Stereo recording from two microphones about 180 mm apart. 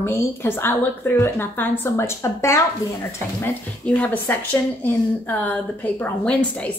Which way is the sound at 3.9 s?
10° left (ahead or behind).